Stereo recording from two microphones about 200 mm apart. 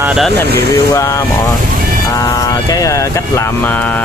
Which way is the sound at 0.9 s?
15° left (ahead or behind).